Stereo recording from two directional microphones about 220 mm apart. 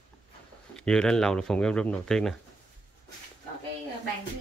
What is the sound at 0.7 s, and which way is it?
Speech, 5° left (ahead or behind).